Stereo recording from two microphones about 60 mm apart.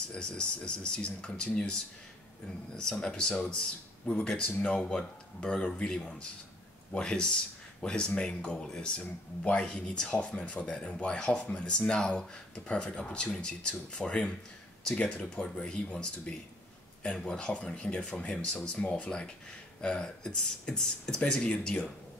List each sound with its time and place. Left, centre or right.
0.1 s speech: centre
18.8 s speech: left
19.0 s speech: centre